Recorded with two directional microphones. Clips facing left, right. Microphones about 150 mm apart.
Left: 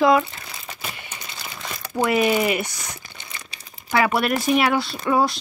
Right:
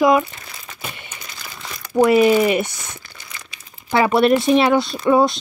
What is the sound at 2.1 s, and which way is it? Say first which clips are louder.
Speech: right 4 dB; 25° right (ahead or behind).